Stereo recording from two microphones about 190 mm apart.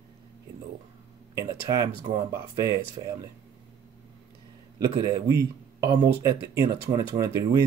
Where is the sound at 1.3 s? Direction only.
15° right (ahead or behind).